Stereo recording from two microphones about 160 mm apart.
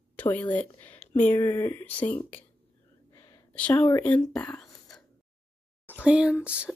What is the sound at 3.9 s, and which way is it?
Speech, 20° left (ahead or behind).